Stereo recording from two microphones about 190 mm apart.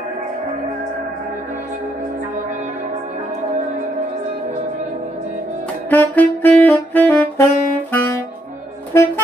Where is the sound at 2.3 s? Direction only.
40° right (ahead or behind).